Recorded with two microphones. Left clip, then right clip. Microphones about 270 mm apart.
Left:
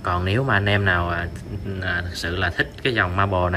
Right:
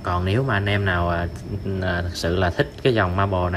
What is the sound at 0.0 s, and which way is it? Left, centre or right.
Speech, centre.